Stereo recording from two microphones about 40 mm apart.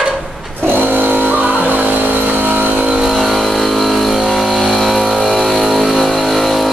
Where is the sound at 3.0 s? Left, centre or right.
Centre.